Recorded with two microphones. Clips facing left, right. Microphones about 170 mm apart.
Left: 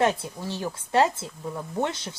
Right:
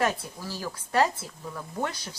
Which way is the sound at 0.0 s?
25° left (ahead or behind).